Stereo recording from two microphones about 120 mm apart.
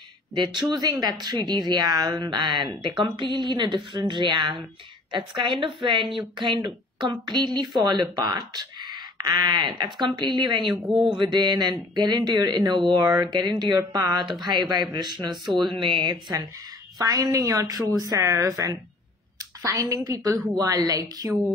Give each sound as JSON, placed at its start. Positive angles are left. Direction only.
{"t": 0.3, "sound": "a woman's voice", "side_deg": -40}
{"t": 15.5, "sound": "speech", "side_deg": 0}
{"t": 15.8, "sound": "a woman's voice", "side_deg": -45}